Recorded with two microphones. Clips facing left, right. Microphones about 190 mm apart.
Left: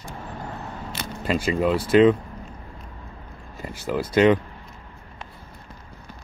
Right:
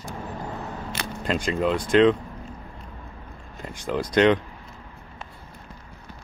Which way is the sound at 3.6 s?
5° left (ahead or behind).